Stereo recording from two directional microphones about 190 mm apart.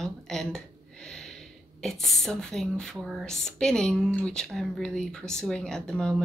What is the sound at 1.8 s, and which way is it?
Speech, centre (ahead or behind).